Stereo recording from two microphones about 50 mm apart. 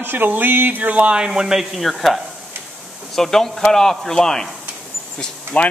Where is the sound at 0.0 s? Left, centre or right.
Right.